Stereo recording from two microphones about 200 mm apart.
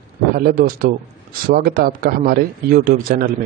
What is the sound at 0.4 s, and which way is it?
A man's voice, 45° right (ahead or behind).